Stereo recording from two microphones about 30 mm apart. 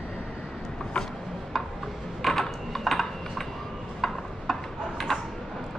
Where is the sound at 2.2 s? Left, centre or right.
Centre.